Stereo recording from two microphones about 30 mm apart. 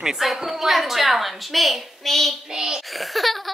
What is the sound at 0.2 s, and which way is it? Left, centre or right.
A woman's voice, centre.